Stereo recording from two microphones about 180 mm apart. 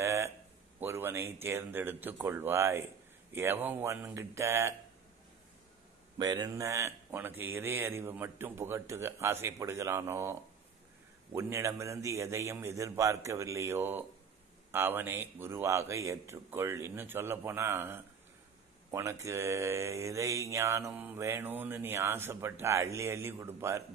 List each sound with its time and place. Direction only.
0.0 s a sound: 15° right (ahead or behind)
0.7 s mantra: 10° right (ahead or behind)
6.1 s mantra: 25° right (ahead or behind)
11.3 s mantra: 15° right (ahead or behind)
18.9 s speech: 15° right (ahead or behind)
19.2 s mantra: 15° right (ahead or behind)